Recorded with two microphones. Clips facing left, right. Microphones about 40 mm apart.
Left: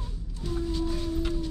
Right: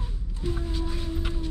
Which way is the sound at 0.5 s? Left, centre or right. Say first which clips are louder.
Left 3 dB; centre.